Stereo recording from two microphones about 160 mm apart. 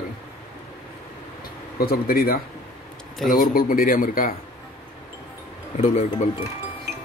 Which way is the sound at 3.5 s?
60° left (ahead or behind).